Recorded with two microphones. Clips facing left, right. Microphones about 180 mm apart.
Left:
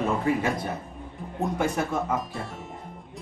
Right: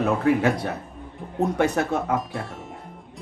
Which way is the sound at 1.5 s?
70° right (ahead or behind).